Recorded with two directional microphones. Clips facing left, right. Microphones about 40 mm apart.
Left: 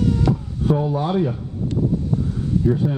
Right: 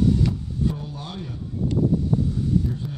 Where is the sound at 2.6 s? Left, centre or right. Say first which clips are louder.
Left 11 dB; left.